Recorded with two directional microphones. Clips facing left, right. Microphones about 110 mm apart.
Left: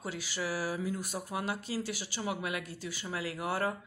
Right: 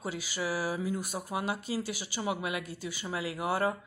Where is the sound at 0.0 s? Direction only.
10° right (ahead or behind).